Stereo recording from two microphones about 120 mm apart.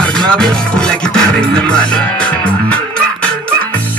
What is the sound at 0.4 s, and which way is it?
Music, 5° left (ahead or behind).